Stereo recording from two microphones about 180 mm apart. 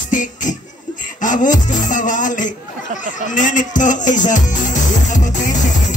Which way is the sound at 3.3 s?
45° left (ahead or behind).